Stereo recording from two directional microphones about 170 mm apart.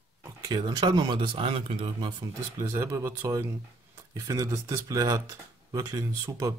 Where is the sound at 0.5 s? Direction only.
25° right (ahead or behind).